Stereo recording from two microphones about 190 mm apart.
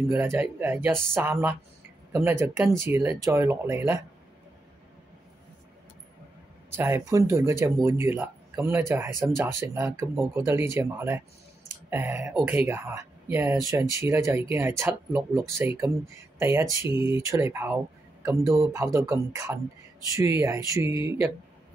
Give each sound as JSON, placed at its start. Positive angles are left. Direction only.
{"t": 0.1, "sound": "speech", "side_deg": -10}
{"t": 6.8, "sound": "a man's voice", "side_deg": -15}